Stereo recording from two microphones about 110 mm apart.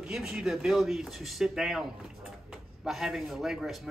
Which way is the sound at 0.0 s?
5° right (ahead or behind).